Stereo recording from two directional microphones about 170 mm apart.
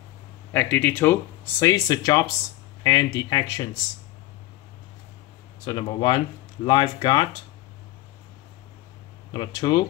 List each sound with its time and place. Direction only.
0.5 s speech: 10° left (ahead or behind)
5.7 s speech: 25° left (ahead or behind)
9.3 s speech: 25° left (ahead or behind)